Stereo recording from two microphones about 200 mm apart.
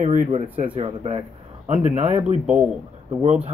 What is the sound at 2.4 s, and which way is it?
Speech, 5° right (ahead or behind).